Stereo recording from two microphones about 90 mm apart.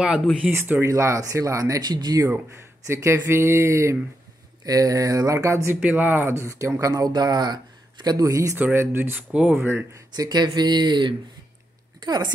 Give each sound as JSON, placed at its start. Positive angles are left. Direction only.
{"t": 0.5, "sound": "speech", "side_deg": -25}
{"t": 2.2, "sound": "speech", "side_deg": -30}
{"t": 5.8, "sound": "speech", "side_deg": -15}
{"t": 8.5, "sound": "speech", "side_deg": -20}
{"t": 9.3, "sound": "speech", "side_deg": -10}
{"t": 9.6, "sound": "speech", "side_deg": -20}
{"t": 9.9, "sound": "a woman's voice", "side_deg": -45}